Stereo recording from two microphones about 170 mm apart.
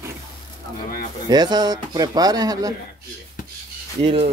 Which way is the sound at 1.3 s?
25° right (ahead or behind).